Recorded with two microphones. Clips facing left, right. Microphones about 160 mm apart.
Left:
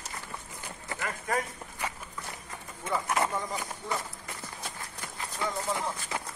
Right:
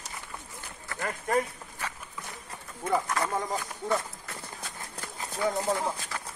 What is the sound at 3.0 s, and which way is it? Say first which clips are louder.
Speech: left 2 dB; 20° left (ahead or behind).